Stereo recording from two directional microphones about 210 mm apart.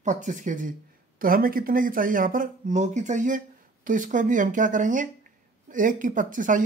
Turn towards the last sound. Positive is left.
turn(degrees=-40)  # may be behind; listen again after turning